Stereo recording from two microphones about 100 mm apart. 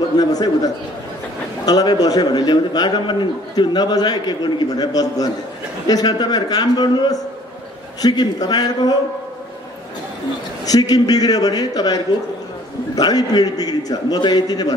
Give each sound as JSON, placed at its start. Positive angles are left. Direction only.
{"t": 0.2, "sound": "a man's voice", "side_deg": 40}
{"t": 1.7, "sound": "a man's voice", "side_deg": 40}
{"t": 10.6, "sound": "a man's voice", "side_deg": 40}